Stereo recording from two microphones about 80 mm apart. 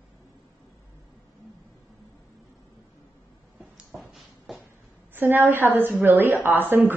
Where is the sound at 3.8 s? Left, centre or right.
Centre.